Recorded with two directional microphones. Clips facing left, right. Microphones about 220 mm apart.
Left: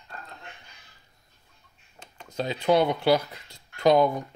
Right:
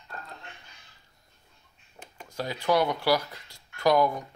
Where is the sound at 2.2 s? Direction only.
20° left (ahead or behind).